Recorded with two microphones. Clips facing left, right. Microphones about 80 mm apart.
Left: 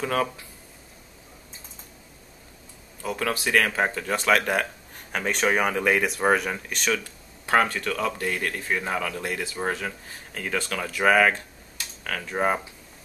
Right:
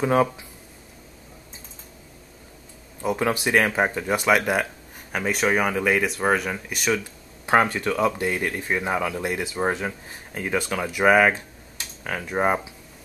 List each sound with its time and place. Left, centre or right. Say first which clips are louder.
0.0 s speech: right 5 dB; centre
3.0 s speech: right 4 dB; centre
7.4 s speech: right 2 dB; centre